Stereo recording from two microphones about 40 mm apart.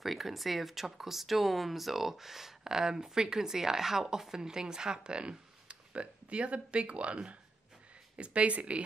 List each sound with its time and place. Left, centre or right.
0.0 s speech: centre; by 8.8 s right